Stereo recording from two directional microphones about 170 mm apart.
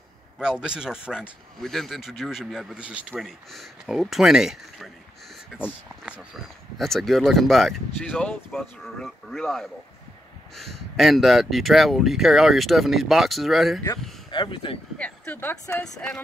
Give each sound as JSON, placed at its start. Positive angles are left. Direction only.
{"t": 0.4, "sound": "speech", "side_deg": -5}
{"t": 6.8, "sound": "speech", "side_deg": 0}
{"t": 14.3, "sound": "speech", "side_deg": 30}
{"t": 15.0, "sound": "speech", "side_deg": 10}
{"t": 15.8, "sound": "speech", "side_deg": 5}